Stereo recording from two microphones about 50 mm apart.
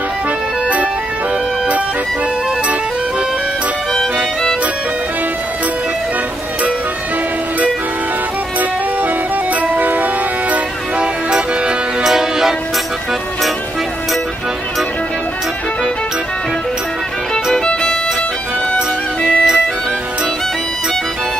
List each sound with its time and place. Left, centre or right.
3.9 s music: centre
9.6 s music: right
11.0 s music: centre
19.2 s music: centre